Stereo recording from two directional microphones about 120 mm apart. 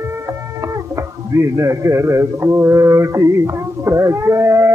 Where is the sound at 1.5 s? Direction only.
25° right (ahead or behind).